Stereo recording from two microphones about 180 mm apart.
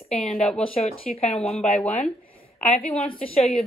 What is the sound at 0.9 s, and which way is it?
Speech, 35° left (ahead or behind).